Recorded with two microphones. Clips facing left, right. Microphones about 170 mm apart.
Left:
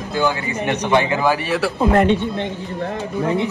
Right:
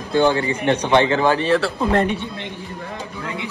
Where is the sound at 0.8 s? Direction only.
10° left (ahead or behind).